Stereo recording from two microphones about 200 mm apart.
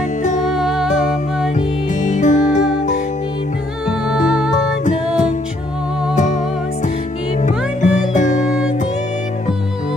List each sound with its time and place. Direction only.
0.5 s music: centre (ahead or behind)
2.0 s music: 40° left (ahead or behind)
6.1 s music: 40° left (ahead or behind)
7.4 s music: 35° left (ahead or behind)